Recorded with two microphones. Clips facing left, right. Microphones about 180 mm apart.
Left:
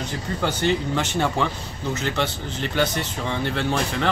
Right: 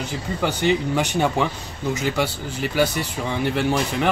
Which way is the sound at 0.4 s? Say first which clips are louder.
Right 2 dB; 15° right (ahead or behind).